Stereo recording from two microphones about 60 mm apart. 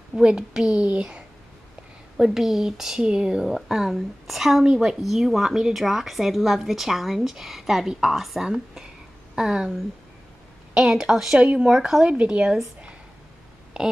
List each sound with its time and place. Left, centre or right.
0.1 s a woman's voice: centre
2.1 s a woman's voice: centre